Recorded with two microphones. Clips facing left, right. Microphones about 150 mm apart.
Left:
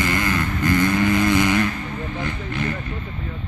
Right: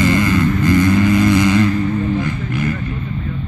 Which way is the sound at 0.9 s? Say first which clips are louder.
Right 5 dB; 20° left (ahead or behind).